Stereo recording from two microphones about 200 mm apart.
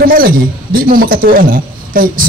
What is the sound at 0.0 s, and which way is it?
A man's voice, 45° right (ahead or behind).